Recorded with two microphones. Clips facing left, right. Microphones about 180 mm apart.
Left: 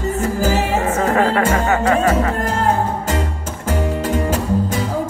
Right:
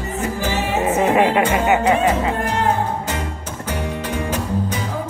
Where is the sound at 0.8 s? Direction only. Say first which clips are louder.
Right 4 dB; 20° right (ahead or behind).